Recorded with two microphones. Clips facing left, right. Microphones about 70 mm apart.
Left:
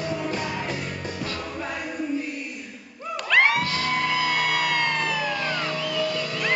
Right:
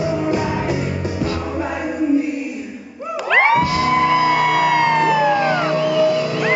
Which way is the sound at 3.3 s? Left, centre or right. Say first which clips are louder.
Right 6 dB; right.